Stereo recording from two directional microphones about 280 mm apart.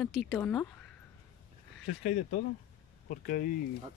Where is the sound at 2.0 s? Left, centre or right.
Left.